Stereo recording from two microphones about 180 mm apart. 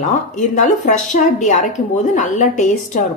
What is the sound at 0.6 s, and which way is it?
A woman's voice, 45° left (ahead or behind).